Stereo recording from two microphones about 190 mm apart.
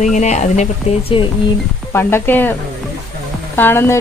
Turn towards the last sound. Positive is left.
turn(degrees=10)  # may be behind; listen again after turning